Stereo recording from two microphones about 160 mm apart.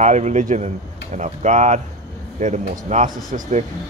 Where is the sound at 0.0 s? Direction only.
45° right (ahead or behind).